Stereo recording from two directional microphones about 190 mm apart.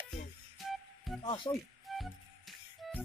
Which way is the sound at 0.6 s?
Centre (ahead or behind).